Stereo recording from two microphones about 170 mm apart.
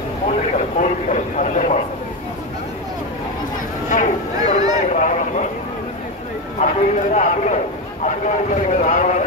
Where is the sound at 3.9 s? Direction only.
45° left (ahead or behind).